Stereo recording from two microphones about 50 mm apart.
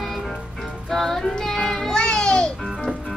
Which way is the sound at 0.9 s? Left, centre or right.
Centre.